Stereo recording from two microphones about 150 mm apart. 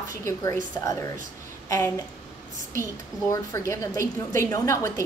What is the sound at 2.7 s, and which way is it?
A woman's voice, 20° left (ahead or behind).